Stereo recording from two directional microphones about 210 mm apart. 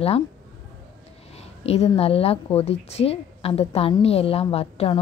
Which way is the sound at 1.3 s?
30° left (ahead or behind).